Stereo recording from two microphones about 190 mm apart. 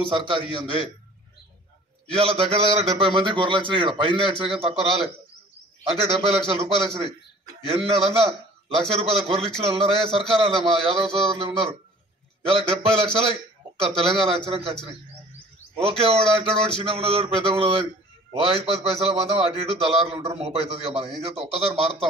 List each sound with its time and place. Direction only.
0.0 s a man's voice: 25° right (ahead or behind)
2.0 s a man's voice: 30° right (ahead or behind)
11.1 s a sound: centre (ahead or behind)
12.4 s a man's voice: 30° right (ahead or behind)
15.8 s a man's voice: 30° right (ahead or behind)